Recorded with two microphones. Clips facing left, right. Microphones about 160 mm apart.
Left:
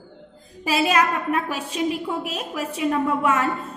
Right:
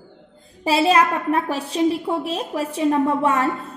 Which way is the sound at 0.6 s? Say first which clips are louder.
Right 3 dB; 30° right (ahead or behind).